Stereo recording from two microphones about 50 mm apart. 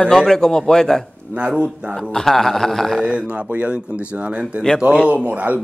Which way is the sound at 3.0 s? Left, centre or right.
Right.